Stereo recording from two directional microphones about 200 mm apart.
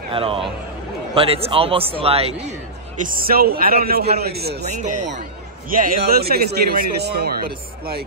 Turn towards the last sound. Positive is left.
turn(degrees=-50)  # may be behind; listen again after turning